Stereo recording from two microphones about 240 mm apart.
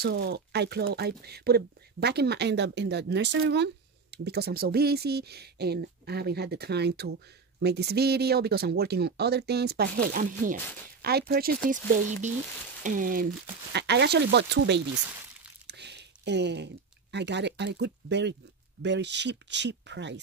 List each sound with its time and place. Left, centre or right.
0.0 s speech: right
15.6 s a sound: right
18.8 s speech: right